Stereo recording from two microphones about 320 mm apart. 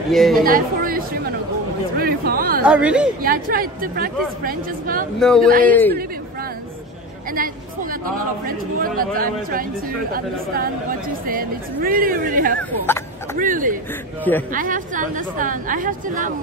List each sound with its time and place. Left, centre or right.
0.1 s a woman's voice: centre
0.4 s chatter: right
2.0 s speech: right
2.6 s a woman's voice: centre
3.2 s a woman's voice: right
5.2 s a woman's voice: centre
8.5 s a woman's voice: right